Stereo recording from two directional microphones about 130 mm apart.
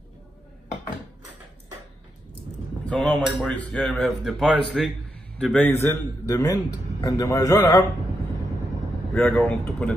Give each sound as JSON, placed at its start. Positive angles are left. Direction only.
{"t": 2.8, "sound": "a man's voice", "side_deg": 10}
{"t": 9.1, "sound": "speech", "side_deg": 5}